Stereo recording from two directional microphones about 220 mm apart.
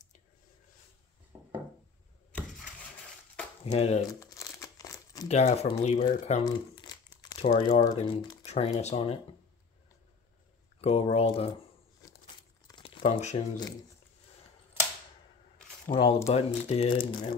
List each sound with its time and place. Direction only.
3.6 s speech: 30° left (ahead or behind)
4.1 s crumpling: 15° left (ahead or behind)
5.3 s speech: 30° left (ahead or behind)
6.4 s crumpling: 20° left (ahead or behind)
7.5 s speech: 25° left (ahead or behind)
10.8 s speech: 30° left (ahead or behind)
12.6 s a sound: 20° left (ahead or behind)
15.9 s speech: 20° left (ahead or behind)